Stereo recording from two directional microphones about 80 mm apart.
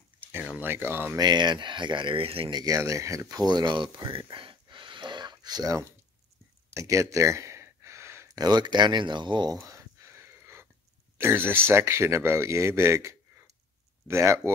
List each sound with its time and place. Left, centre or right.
0.6 s speech: right
1.1 s speech: right
2.6 s speech: right
6.7 s a sound: right
8.4 s speech: right
9.6 s a sound: right
11.1 s speech: right